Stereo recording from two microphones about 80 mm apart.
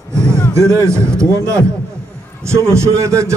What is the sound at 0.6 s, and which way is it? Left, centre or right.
A man's voice, right.